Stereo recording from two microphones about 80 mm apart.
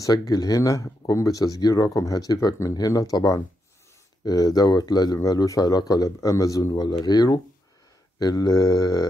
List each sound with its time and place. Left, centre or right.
0.0 s speech: left